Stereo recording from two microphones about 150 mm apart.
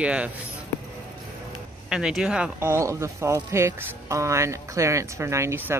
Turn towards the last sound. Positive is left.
turn(degrees=-15)  # may be behind; listen again after turning